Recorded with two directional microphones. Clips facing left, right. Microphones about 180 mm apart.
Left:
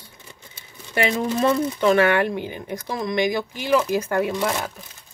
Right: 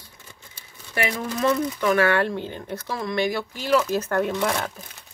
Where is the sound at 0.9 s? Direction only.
25° left (ahead or behind); by 4.7 s 5° left (ahead or behind).